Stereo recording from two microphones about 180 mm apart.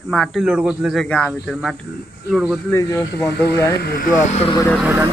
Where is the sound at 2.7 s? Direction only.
15° left (ahead or behind).